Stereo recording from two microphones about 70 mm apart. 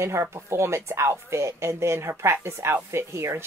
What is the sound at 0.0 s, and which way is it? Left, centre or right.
Speech, right.